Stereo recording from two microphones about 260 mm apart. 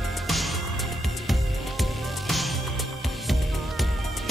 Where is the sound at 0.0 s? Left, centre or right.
Centre.